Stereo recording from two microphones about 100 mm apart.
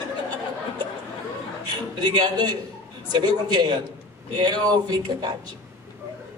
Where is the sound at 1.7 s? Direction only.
45° right (ahead or behind).